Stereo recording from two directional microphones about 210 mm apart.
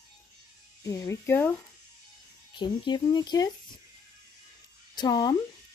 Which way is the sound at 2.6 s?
20° left (ahead or behind).